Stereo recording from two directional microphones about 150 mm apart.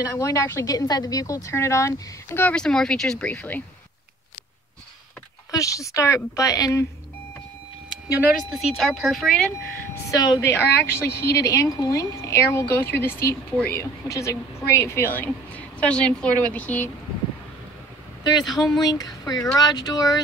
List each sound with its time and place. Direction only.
0.2 s speech: 20° left (ahead or behind)
5.5 s a woman's voice: 20° left (ahead or behind)
8.3 s speech: centre (ahead or behind)
10.0 s a woman's voice: 25° left (ahead or behind)
18.2 s a woman's voice: 30° left (ahead or behind)